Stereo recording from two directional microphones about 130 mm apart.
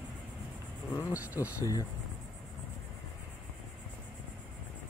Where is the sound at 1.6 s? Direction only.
25° left (ahead or behind).